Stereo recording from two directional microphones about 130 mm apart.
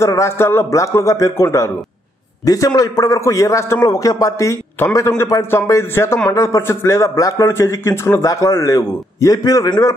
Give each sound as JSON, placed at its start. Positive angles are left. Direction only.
{"t": 0.0, "sound": "a man's voice", "side_deg": 20}